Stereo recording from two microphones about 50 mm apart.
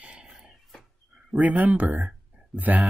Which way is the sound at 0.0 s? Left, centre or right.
Right.